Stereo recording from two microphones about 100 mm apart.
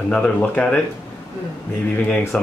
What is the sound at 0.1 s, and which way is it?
Speech, 10° left (ahead or behind).